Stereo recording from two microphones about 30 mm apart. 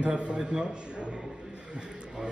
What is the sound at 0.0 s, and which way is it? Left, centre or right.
Speech, right.